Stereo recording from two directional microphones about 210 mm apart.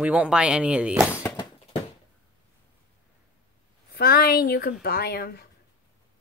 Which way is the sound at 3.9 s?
45° left (ahead or behind).